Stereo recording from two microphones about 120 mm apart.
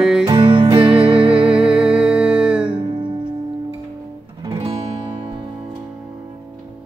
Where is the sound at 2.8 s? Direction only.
40° right (ahead or behind).